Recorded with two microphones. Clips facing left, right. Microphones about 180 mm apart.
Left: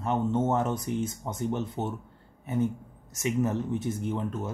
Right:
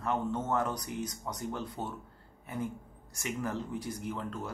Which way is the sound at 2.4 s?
25° left (ahead or behind).